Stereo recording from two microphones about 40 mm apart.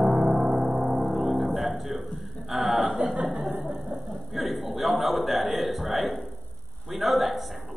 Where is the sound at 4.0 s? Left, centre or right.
Centre.